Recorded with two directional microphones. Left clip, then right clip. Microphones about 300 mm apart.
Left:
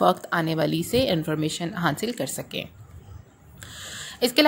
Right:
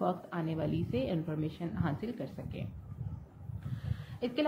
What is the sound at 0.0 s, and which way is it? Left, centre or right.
A woman's voice, left.